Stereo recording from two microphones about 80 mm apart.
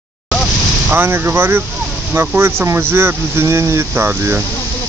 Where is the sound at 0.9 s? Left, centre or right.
Right.